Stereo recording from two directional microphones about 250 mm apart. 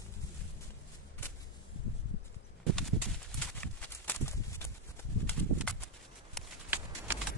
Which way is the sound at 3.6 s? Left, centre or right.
Centre.